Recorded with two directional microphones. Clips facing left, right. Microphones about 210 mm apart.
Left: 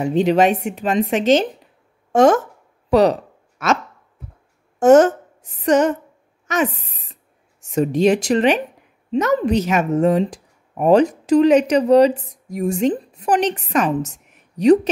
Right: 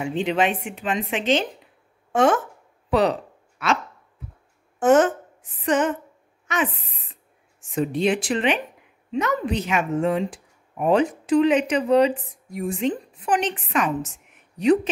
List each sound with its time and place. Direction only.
0.0 s a woman's voice: 40° left (ahead or behind)
2.9 s a sound: 40° left (ahead or behind)
4.7 s a woman's voice: 40° left (ahead or behind)